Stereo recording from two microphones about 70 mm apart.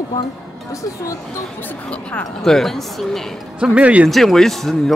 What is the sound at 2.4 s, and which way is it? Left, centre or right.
Speech, centre.